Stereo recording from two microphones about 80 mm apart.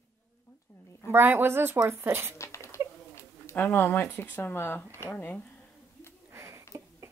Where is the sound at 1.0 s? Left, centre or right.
Right.